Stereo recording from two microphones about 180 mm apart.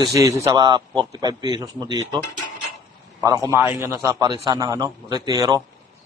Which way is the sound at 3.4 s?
15° right (ahead or behind).